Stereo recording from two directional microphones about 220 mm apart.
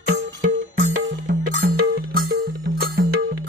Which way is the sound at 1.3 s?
40° right (ahead or behind).